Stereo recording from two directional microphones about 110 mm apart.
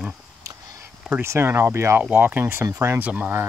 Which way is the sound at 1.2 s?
25° right (ahead or behind).